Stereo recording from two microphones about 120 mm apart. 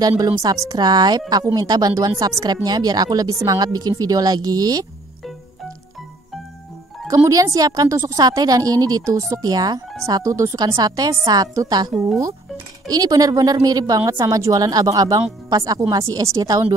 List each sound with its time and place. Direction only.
0.7 s a woman's voice: 35° right (ahead or behind)
7.2 s a woman's voice: 30° right (ahead or behind)